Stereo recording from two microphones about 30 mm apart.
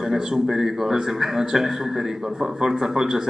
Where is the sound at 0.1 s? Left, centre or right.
Centre.